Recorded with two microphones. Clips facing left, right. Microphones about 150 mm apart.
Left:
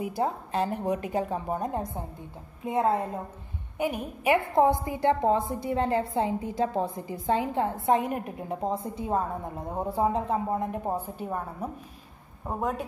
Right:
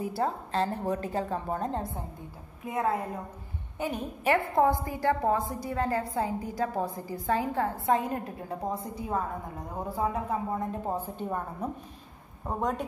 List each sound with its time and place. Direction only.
0.0 s a woman's voice: 15° left (ahead or behind)
2.6 s a woman's voice: 25° left (ahead or behind)
3.7 s a woman's voice: 10° left (ahead or behind)